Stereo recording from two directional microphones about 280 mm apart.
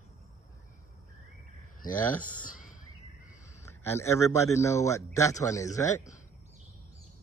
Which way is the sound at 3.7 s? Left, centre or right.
Centre.